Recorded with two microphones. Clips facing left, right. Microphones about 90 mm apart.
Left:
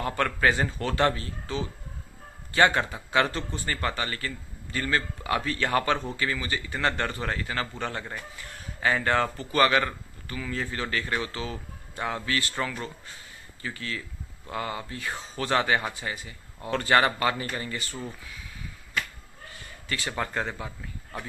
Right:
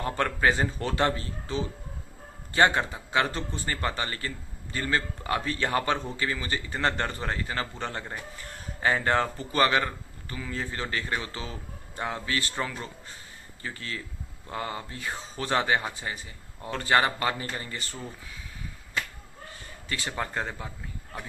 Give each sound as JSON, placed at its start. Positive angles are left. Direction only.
{"t": 0.0, "sound": "a man's voice", "side_deg": -25}
{"t": 19.9, "sound": "a man's voice", "side_deg": -25}
{"t": 20.5, "sound": "speech", "side_deg": 15}